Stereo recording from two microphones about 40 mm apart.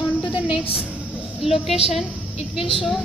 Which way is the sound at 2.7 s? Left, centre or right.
Centre.